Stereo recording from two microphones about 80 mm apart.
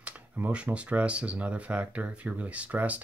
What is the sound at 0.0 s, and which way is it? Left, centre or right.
Speech, centre.